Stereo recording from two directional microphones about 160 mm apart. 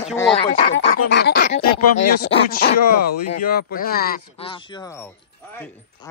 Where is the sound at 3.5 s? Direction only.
70° left (ahead or behind).